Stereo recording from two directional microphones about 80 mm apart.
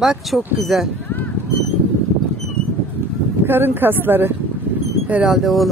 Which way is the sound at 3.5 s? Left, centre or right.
Right.